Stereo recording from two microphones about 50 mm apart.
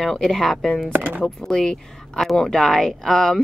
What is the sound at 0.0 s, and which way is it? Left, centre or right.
Speech, centre.